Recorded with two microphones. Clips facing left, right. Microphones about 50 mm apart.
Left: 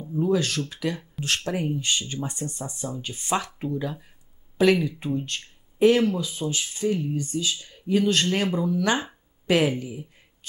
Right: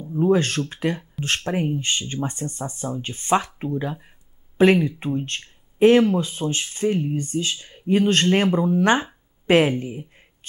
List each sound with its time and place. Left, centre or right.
0.2 s speech: right